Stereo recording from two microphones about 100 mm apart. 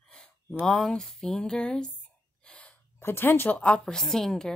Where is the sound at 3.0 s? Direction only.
25° left (ahead or behind).